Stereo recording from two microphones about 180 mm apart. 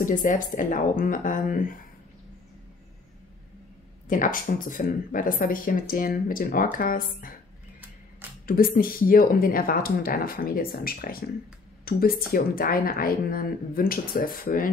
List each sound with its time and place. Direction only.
0.0 s speech: 45° left (ahead or behind)
4.1 s speech: 50° left (ahead or behind)
8.5 s speech: 50° left (ahead or behind)